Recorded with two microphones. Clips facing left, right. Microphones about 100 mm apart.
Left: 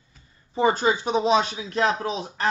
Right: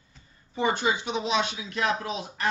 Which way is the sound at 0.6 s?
35° left (ahead or behind).